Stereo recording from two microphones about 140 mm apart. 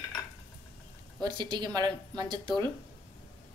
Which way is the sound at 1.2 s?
30° right (ahead or behind).